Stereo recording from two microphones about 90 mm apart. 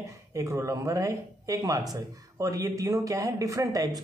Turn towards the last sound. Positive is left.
turn(degrees=-40)  # may be behind; listen again after turning